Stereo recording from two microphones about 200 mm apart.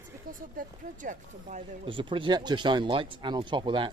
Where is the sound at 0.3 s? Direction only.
40° right (ahead or behind).